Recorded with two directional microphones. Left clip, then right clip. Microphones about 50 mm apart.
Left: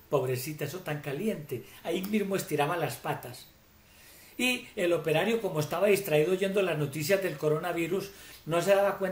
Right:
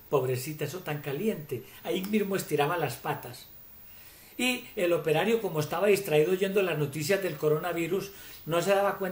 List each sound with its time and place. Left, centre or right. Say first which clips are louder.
0.1 s speech: right 1 dB; centre